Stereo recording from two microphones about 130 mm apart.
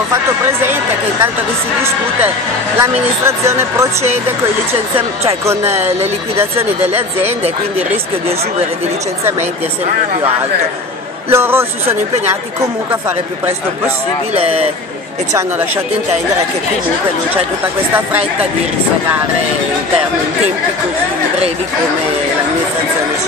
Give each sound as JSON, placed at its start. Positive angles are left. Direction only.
{"t": 0.1, "sound": "speech", "side_deg": -20}
{"t": 2.8, "sound": "speech", "side_deg": -20}
{"t": 5.4, "sound": "speech", "side_deg": -20}
{"t": 5.7, "sound": "speech", "side_deg": -55}
{"t": 11.2, "sound": "speech", "side_deg": -20}
{"t": 14.3, "sound": "speech", "side_deg": -50}